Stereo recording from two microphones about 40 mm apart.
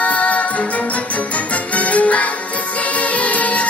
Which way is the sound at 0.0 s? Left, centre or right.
Left.